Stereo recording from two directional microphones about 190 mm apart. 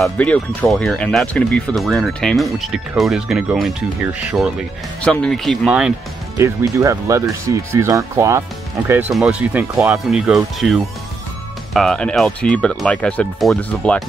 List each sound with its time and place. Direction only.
0.0 s speech: 5° left (ahead or behind)
6.3 s speech: 15° right (ahead or behind)
10.0 s speech: centre (ahead or behind)